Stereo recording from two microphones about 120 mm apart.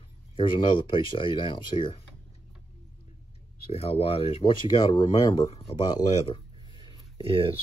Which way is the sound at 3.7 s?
55° left (ahead or behind).